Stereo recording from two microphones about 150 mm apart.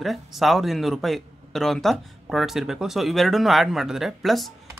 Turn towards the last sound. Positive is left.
turn(degrees=0)  # may be behind; listen again after turning